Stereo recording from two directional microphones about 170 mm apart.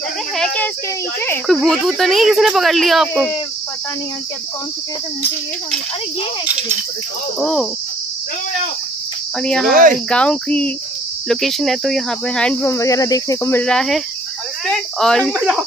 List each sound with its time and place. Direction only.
1.5 s speech: centre (ahead or behind)
7.3 s speech: centre (ahead or behind)
9.4 s speech: 5° left (ahead or behind)
9.7 s speech: 55° right (ahead or behind)
10.0 s speech: 5° left (ahead or behind)
12.7 s speech: 20° left (ahead or behind); by 15.3 s 5° left (ahead or behind)